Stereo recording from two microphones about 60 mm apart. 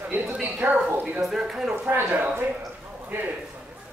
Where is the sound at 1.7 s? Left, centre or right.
Right.